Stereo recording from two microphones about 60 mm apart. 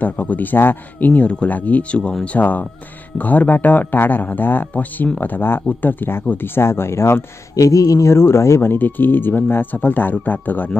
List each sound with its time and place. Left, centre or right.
0.0 s a man's voice: left
1.1 s speech: left
2.3 s a man's voice: left
7.5 s speech: left
8.1 s speech: left
8.7 s a man's voice: left